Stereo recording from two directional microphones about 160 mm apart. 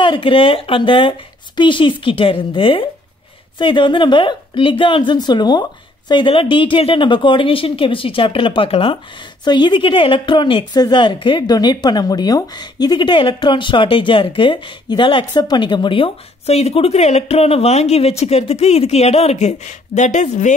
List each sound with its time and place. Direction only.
0.0 s speech: 30° left (ahead or behind); by 20.5 s 50° left (ahead or behind)